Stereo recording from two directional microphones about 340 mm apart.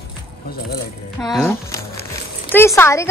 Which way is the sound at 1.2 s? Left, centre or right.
Centre.